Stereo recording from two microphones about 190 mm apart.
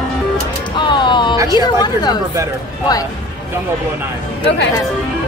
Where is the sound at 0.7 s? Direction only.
25° left (ahead or behind).